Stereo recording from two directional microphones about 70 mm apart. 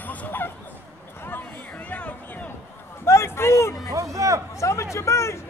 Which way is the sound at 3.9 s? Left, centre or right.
Right.